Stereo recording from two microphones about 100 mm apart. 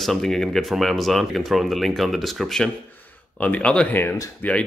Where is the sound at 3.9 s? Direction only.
20° left (ahead or behind).